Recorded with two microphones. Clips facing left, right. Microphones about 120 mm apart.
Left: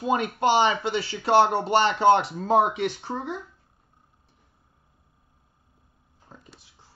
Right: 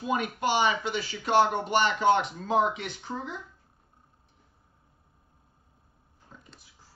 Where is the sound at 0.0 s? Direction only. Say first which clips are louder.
Left 5 dB; 30° left (ahead or behind).